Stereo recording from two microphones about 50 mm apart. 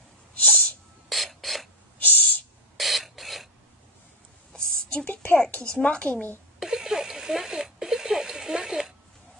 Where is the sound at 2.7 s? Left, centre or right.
Centre.